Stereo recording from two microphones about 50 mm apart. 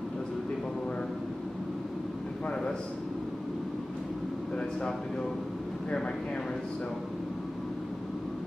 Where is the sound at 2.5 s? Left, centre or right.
Centre.